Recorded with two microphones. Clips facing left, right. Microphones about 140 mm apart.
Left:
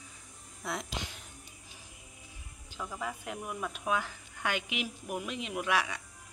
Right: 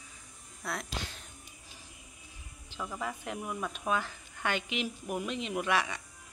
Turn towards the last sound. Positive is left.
turn(degrees=10)  # may be behind; listen again after turning